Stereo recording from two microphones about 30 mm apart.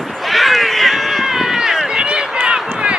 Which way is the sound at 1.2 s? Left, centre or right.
Centre.